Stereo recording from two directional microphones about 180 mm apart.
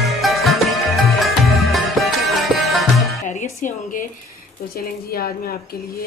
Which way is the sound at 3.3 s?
45° left (ahead or behind).